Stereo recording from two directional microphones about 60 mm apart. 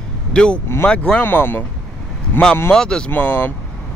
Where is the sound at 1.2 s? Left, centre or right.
Left.